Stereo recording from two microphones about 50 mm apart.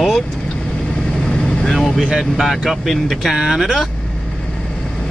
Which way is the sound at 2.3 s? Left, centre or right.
Centre.